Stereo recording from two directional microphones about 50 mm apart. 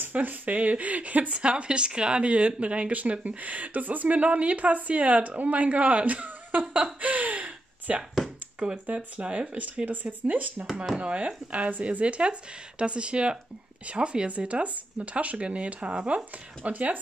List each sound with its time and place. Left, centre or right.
0.0 s speech: right
6.7 s a sound: right
9.2 s speech: right
16.6 s speech: right